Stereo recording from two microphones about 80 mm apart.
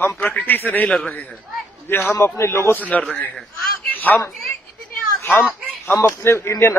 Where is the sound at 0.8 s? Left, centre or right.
Centre.